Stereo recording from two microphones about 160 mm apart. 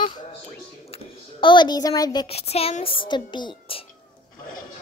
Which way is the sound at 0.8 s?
35° left (ahead or behind).